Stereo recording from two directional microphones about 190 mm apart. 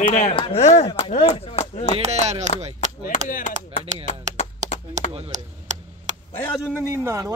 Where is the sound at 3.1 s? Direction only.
40° left (ahead or behind).